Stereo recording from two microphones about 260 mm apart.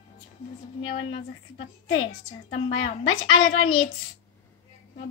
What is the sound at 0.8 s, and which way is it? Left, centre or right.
A woman's voice, left.